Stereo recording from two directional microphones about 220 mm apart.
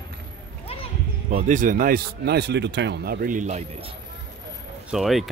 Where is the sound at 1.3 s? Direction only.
35° right (ahead or behind).